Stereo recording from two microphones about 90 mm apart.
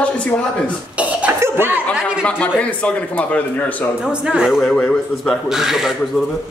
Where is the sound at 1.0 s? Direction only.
15° right (ahead or behind).